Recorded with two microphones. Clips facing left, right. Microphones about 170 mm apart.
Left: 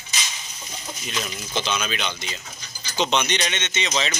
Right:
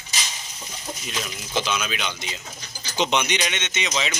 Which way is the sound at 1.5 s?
5° right (ahead or behind).